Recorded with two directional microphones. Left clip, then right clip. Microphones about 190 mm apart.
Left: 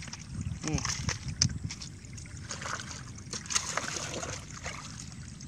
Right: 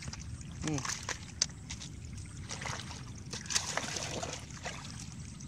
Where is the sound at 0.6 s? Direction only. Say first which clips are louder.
Left 2 dB; centre (ahead or behind).